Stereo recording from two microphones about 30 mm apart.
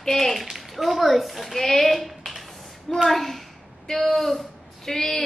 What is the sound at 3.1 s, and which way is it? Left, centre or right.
A woman's voice, centre.